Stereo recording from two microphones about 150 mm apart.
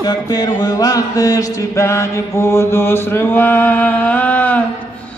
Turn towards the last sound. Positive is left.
turn(degrees=10)  # may be behind; listen again after turning